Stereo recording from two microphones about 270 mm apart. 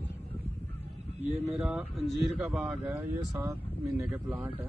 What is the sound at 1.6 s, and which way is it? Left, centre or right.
Speech, centre.